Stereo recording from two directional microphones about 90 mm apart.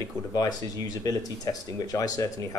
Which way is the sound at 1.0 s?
45° left (ahead or behind).